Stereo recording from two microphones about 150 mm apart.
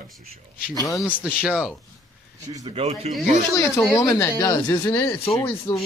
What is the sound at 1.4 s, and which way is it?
Speech, 10° right (ahead or behind).